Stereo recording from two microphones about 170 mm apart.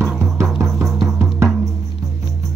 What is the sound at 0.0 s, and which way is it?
Music, 15° right (ahead or behind).